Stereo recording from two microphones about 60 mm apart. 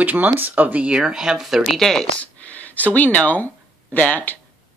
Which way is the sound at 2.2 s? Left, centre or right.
Left.